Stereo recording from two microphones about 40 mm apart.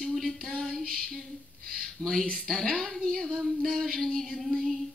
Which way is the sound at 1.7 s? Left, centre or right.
Centre.